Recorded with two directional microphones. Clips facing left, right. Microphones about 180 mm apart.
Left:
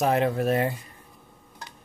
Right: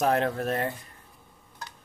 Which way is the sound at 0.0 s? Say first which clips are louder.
Left 2 dB; 5° left (ahead or behind).